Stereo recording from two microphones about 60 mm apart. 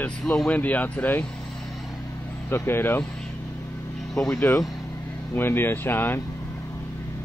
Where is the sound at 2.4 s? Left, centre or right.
Left.